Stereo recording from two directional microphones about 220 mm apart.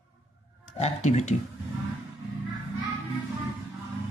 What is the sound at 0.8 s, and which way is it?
Speech, 30° left (ahead or behind).